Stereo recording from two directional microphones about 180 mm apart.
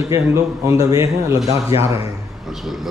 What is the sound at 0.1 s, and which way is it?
Speech, 15° right (ahead or behind).